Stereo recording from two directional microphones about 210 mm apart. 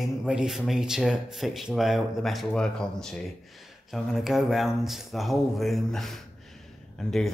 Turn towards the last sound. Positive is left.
turn(degrees=0)  # may be behind; listen again after turning